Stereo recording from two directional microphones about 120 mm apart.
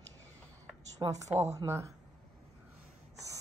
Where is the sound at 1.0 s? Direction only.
35° right (ahead or behind).